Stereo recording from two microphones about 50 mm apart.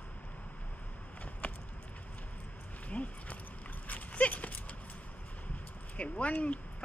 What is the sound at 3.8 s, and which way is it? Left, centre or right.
Dog, left.